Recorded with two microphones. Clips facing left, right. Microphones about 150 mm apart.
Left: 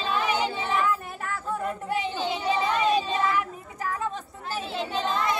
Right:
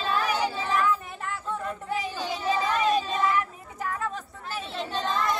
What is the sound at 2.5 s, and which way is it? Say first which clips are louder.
Child singing: left 1 dB; 25° left (ahead or behind).